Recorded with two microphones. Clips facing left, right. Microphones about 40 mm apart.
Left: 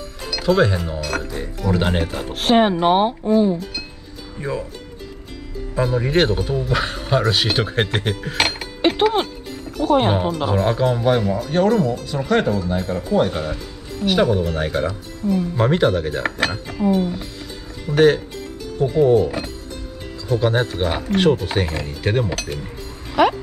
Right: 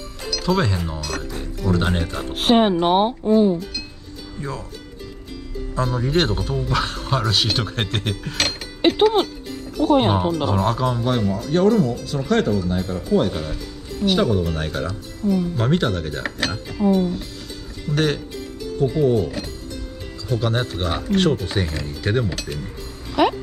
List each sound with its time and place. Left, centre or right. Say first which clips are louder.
0.3 s speech: left 4 dB; centre
4.4 s speech: left 5 dB; centre
5.9 s speech: left 3 dB; centre
8.8 s music: right 1 dB; centre
10.0 s speech: even; centre
23.2 s speech: left 2 dB; centre